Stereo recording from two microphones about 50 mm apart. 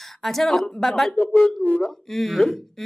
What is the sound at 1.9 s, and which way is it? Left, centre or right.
Speech, centre.